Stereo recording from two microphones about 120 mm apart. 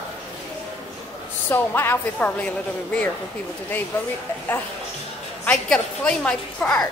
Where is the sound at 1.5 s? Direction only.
20° left (ahead or behind).